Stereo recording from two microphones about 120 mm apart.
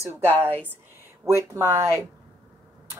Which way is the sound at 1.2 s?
25° right (ahead or behind).